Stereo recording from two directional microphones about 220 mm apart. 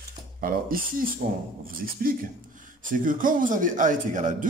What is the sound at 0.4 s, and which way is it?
A man's voice, 40° right (ahead or behind).